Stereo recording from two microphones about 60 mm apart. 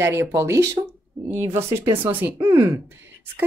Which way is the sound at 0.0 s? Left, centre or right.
Right.